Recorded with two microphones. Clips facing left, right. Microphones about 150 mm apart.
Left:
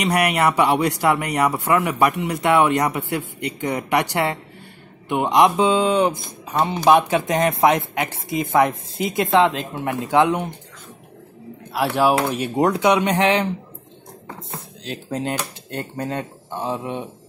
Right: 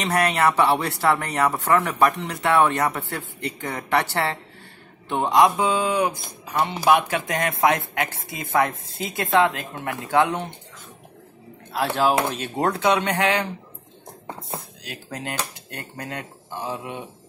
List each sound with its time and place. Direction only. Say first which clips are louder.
0.0 s speech: left 2 dB; 15° left (ahead or behind)
11.7 s speech: left 3 dB; 15° left (ahead or behind)
14.9 s speech: left 7 dB; 25° left (ahead or behind)